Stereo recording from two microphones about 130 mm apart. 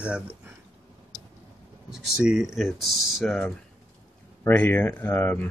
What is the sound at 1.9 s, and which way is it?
Speech, 5° right (ahead or behind).